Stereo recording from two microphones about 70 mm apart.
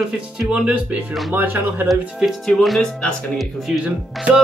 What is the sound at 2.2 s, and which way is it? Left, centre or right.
Speech, centre.